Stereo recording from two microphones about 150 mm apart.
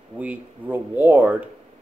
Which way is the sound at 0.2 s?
10° right (ahead or behind).